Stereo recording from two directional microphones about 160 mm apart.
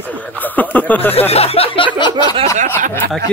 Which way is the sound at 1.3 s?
40° left (ahead or behind).